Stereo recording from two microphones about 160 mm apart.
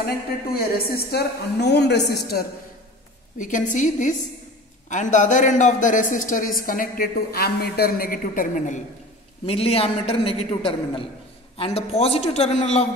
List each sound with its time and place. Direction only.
0.5 s a woman's voice: 70° left (ahead or behind)
3.3 s a woman's voice: 50° left (ahead or behind)
9.5 s a man's voice: 35° left (ahead or behind)